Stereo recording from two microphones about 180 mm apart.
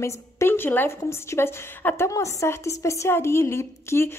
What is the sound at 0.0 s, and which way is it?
A woman's voice, 15° left (ahead or behind).